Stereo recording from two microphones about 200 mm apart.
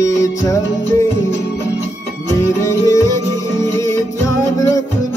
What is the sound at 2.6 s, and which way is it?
Music, 15° left (ahead or behind).